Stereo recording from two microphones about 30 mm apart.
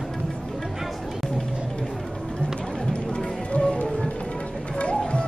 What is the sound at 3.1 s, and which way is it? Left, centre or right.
Music, left.